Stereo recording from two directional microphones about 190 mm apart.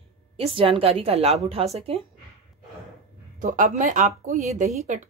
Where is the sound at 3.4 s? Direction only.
40° right (ahead or behind).